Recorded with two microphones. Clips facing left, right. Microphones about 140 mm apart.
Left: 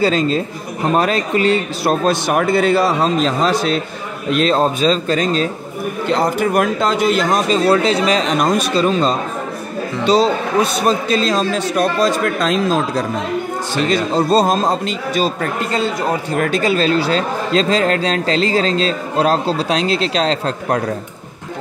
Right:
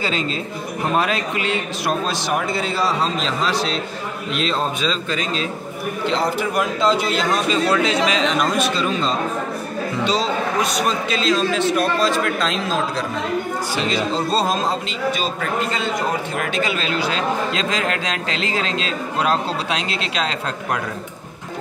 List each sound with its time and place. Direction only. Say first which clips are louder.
0.0 s a man's voice: left 8 dB; 40° left (ahead or behind)
2.2 s a man's voice: left 7 dB; 55° left (ahead or behind)
7.6 s a man's voice: left 4 dB; 35° left (ahead or behind)